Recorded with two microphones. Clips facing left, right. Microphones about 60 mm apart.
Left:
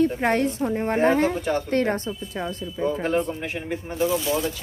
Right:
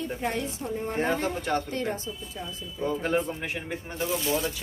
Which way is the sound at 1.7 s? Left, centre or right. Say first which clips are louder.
Left 8 dB; left.